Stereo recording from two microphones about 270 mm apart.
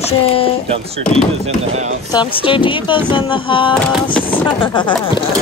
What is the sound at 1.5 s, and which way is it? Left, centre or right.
Speech, right.